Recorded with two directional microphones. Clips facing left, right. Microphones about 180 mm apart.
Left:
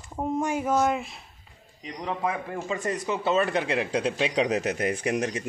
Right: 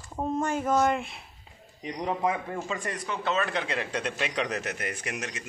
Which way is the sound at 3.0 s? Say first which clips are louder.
Left 4 dB; 10° left (ahead or behind).